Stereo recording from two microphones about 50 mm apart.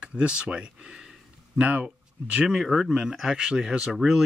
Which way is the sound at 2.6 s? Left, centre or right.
Centre.